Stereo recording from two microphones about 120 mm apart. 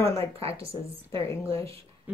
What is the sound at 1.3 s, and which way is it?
Speech, 25° left (ahead or behind).